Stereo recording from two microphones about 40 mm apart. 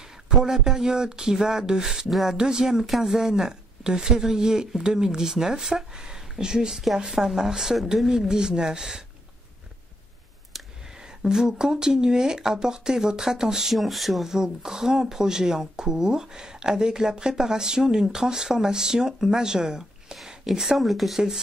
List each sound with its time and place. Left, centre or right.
0.4 s speech: centre
8.3 s speech: centre
11.2 s speech: centre
13.7 s speech: centre
14.2 s speech: centre